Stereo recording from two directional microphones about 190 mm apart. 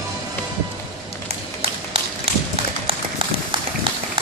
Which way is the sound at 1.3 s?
30° right (ahead or behind).